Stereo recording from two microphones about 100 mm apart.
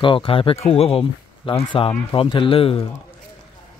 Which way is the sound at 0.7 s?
80° left.